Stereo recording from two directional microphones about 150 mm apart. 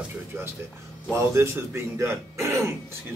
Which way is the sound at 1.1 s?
15° right (ahead or behind).